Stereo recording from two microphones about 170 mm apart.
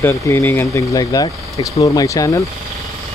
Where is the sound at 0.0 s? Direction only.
15° left (ahead or behind).